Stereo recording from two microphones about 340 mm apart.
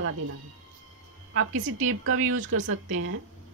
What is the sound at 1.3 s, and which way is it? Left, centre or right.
Speech, right.